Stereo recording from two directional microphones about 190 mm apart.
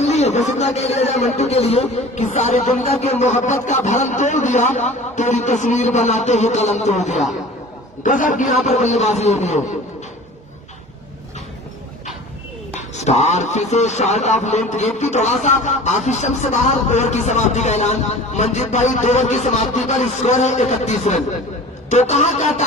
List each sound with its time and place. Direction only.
0.0 s speech: 35° left (ahead or behind)
12.7 s speech: 35° left (ahead or behind)